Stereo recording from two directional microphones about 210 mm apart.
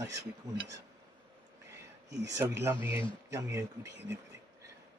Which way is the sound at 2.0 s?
55° right (ahead or behind).